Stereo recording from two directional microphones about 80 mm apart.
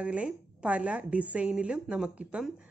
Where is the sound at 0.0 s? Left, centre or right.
Centre.